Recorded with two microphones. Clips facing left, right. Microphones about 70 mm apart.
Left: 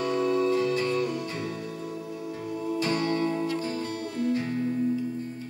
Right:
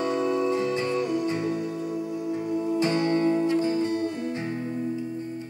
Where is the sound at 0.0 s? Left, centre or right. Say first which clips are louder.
Even; right.